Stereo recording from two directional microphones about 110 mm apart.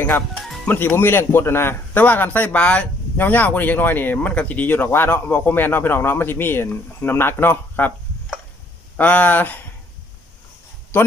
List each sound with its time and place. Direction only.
0.7 s a man's voice: 20° left (ahead or behind)
8.9 s a man's voice: 15° left (ahead or behind)